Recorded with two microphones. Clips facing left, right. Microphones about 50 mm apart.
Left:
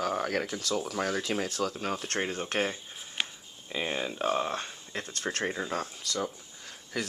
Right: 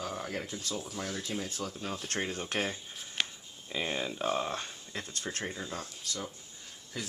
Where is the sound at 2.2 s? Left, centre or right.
Left.